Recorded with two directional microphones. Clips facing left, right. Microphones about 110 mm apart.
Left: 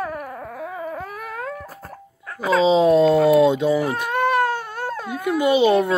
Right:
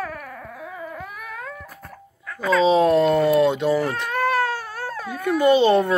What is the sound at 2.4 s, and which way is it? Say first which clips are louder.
Cat: left 1 dB; 20° left (ahead or behind).